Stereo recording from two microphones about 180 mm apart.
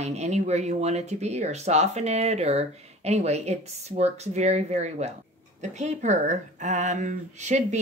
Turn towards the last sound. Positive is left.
turn(degrees=-40)  # may be behind; listen again after turning